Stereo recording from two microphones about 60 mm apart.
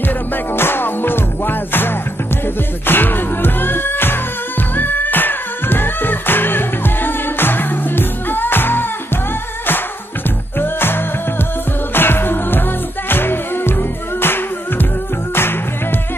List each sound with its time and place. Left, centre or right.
0.6 s music: left
10.6 s music: left